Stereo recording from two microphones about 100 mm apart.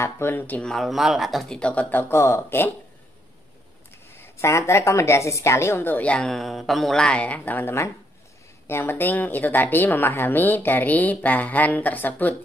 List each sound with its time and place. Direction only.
0.0 s a woman's voice: 25° left (ahead or behind)
0.7 s a woman's voice: centre (ahead or behind); by 2.7 s 25° left (ahead or behind)
3.9 s a woman's voice: 25° left (ahead or behind)